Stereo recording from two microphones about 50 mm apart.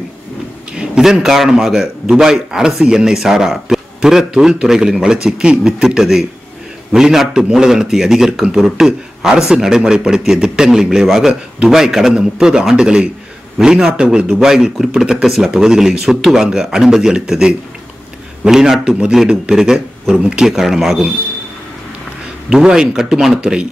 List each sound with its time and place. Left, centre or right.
0.7 s a man's voice: centre
22.5 s a man's voice: centre